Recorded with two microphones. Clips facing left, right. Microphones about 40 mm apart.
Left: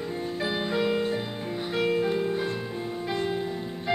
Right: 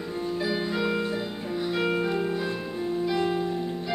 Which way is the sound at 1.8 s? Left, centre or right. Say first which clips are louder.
Left 3 dB; right.